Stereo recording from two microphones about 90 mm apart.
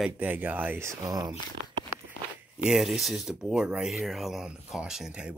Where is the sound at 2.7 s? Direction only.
Centre (ahead or behind).